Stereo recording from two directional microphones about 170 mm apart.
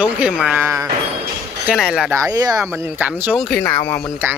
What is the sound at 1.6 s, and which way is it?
Speech, centre (ahead or behind).